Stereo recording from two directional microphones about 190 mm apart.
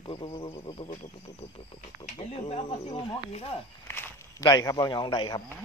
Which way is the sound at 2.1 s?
30° left (ahead or behind).